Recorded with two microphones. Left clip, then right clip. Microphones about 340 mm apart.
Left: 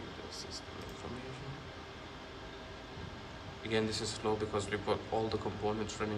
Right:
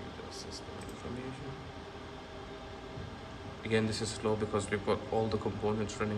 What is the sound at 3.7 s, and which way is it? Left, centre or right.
A man's voice, centre.